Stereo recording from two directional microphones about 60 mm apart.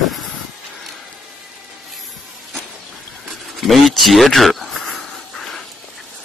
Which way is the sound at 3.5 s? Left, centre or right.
Centre.